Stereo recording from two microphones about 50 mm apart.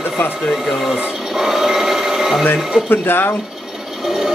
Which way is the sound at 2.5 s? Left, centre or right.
Left.